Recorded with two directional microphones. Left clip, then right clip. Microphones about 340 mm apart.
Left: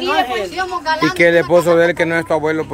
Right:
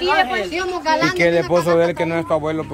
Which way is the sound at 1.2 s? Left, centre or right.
Centre.